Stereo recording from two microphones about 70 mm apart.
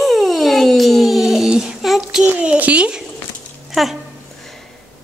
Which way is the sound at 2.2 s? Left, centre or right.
Centre.